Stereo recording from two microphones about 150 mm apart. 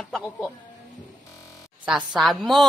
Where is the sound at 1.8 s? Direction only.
5° right (ahead or behind).